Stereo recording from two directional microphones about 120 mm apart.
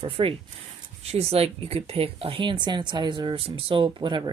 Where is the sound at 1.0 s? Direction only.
60° right (ahead or behind); by 4.3 s 45° right (ahead or behind).